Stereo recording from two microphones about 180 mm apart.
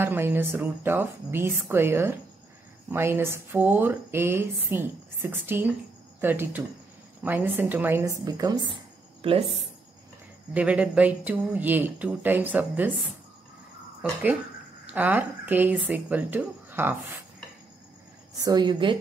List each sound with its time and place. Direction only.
0.0 s speech: 10° right (ahead or behind); by 9.5 s 30° right (ahead or behind)
10.5 s speech: 5° right (ahead or behind)
14.9 s speech: 10° right (ahead or behind)
18.4 s a woman's voice: 25° right (ahead or behind)